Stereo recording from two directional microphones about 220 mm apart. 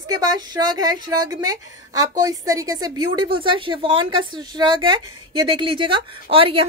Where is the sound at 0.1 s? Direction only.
15° right (ahead or behind).